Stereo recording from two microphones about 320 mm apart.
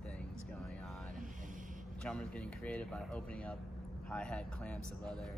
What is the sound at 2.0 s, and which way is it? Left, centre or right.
Speech, centre.